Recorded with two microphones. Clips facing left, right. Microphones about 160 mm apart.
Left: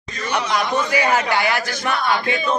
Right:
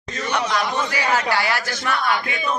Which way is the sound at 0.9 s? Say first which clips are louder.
Left 3 dB; 20° left (ahead or behind).